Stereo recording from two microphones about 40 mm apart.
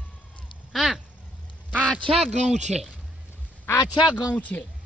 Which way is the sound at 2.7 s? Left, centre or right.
Centre.